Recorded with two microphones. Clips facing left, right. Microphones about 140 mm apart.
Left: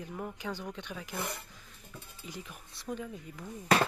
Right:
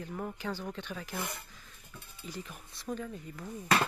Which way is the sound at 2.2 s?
15° left (ahead or behind).